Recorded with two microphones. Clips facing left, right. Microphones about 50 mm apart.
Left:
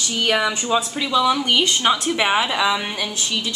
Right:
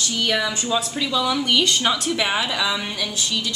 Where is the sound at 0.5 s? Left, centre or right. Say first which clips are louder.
Left 3 dB; left.